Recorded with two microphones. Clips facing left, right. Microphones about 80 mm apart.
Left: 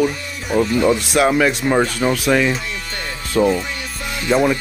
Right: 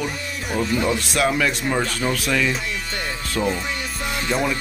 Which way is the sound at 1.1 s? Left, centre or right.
Left.